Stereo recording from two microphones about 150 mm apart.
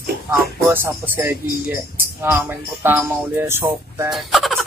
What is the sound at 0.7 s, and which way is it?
Speech, 15° right (ahead or behind).